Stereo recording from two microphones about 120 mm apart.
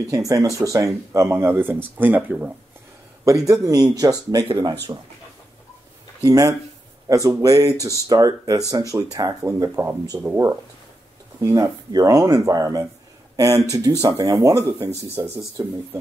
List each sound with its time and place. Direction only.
0.1 s speech: 25° right (ahead or behind)
3.3 s speech: 25° right (ahead or behind)
6.2 s speech: 30° right (ahead or behind)